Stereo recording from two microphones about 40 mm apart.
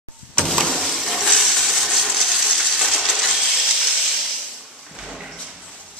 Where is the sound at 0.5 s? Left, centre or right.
Centre.